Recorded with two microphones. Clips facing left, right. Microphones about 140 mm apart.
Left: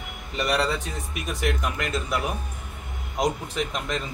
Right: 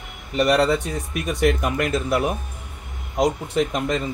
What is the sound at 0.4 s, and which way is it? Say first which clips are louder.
Speech: right 7 dB; centre (ahead or behind).